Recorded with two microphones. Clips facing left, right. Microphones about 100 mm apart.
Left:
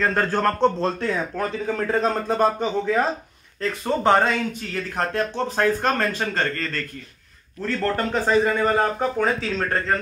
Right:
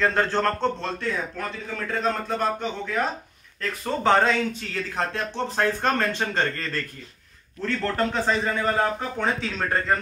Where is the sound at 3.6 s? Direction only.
15° left (ahead or behind).